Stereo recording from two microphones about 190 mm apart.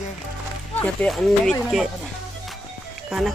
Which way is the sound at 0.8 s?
5° left (ahead or behind).